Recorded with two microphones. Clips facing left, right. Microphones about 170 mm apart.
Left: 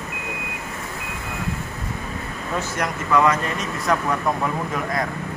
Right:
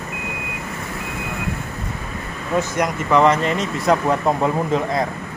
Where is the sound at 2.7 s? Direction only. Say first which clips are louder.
Right 2 dB; 25° right (ahead or behind).